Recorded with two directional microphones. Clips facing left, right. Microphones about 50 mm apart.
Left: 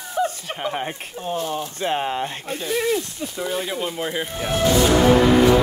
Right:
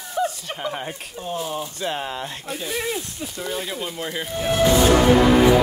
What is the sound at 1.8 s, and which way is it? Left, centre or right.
Speech, left.